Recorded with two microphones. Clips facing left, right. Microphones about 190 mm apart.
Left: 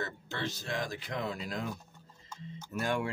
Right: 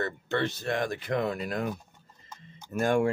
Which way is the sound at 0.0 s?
60° right (ahead or behind).